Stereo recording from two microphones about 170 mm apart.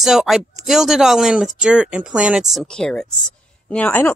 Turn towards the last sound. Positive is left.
turn(degrees=10)  # may be behind; listen again after turning